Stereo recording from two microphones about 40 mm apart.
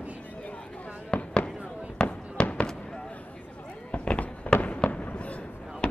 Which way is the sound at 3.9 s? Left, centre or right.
Left.